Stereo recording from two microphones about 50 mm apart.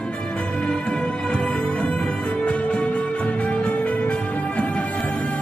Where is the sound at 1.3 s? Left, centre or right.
Left.